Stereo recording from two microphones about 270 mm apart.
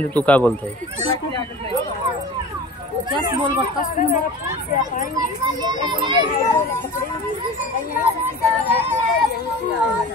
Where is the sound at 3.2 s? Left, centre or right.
Centre.